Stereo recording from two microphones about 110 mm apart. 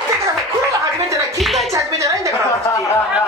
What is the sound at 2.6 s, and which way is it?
Speech, 30° left (ahead or behind).